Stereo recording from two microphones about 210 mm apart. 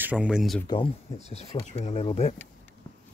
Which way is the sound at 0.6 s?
20° left (ahead or behind).